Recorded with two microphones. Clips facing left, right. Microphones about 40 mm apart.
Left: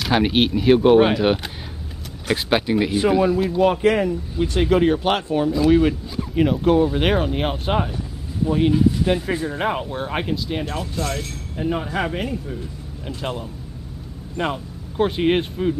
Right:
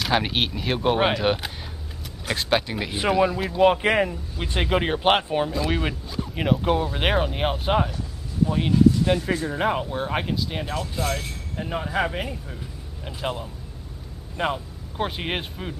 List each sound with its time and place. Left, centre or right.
0.0 s speech: centre
3.4 s speech: centre
5.5 s speech: centre